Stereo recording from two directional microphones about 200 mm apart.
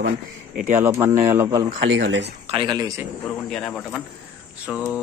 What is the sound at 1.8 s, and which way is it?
Speech, 65° right (ahead or behind).